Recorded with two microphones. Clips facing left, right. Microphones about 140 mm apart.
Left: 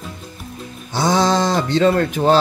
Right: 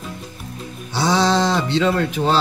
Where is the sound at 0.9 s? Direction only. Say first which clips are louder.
Left 1 dB; 45° left (ahead or behind).